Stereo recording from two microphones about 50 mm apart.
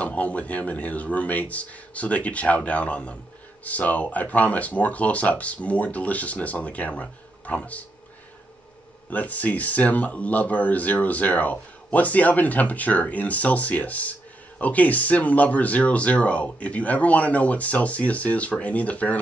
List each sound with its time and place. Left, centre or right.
0.0 s speech: left
9.1 s speech: left